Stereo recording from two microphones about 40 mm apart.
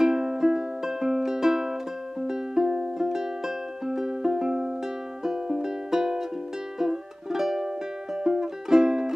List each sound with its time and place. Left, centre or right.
0.0 s music: centre